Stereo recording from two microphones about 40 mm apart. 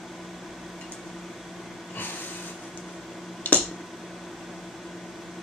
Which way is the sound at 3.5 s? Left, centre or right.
Left.